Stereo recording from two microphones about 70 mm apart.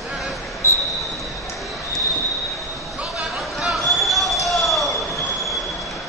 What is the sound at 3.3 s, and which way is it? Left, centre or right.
Basketball bounce, centre.